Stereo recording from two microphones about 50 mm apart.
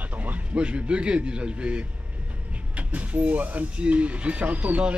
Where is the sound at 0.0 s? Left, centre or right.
Right.